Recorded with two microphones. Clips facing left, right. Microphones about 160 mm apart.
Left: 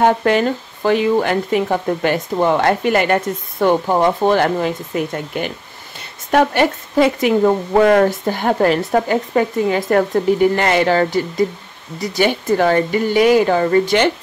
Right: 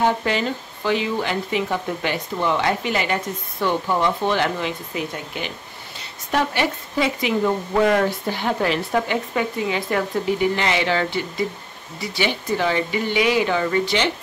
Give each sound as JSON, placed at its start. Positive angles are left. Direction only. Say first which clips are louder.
{"t": 0.0, "sound": "speech", "louder": "left 6 dB", "side_deg": 55}